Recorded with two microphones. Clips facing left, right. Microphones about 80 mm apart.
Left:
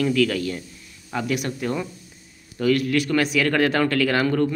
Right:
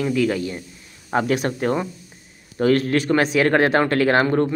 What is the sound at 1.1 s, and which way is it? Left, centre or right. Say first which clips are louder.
Speech: right 5 dB; right.